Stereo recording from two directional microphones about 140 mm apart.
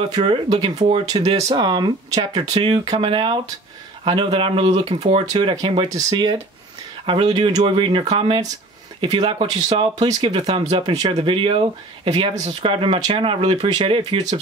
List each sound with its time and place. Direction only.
0.0 s speech: 30° right (ahead or behind)
5.9 s speech: 25° right (ahead or behind); by 8.3 s 45° right (ahead or behind)
9.0 s speech: 30° right (ahead or behind)
10.9 s speech: 40° right (ahead or behind)